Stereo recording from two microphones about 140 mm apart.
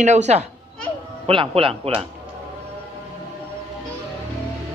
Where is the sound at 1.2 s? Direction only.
40° right (ahead or behind).